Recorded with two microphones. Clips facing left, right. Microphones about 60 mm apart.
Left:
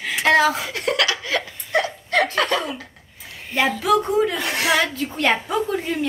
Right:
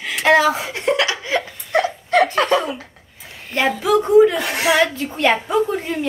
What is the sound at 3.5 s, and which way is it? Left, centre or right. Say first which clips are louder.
Speech: right 1 dB; centre.